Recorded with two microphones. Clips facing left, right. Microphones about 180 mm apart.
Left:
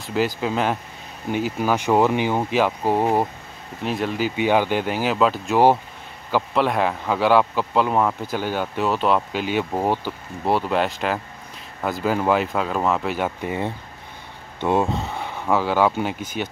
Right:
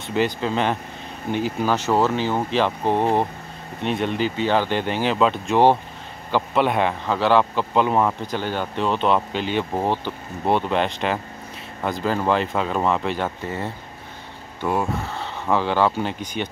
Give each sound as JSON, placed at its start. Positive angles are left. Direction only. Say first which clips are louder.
{"t": 0.0, "sound": "speech", "louder": "even", "side_deg": 5}
{"t": 4.4, "sound": "speech", "louder": "left 3 dB", "side_deg": 10}